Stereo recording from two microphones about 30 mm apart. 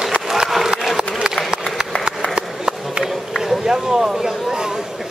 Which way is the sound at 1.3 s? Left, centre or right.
Right.